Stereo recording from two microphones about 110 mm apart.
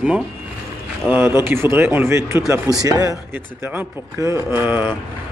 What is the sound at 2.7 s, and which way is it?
Speech, 35° right (ahead or behind).